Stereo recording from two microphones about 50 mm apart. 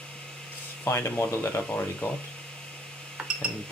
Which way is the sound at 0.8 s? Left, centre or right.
Left.